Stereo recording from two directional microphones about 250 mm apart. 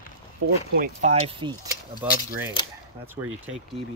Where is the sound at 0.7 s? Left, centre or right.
Right.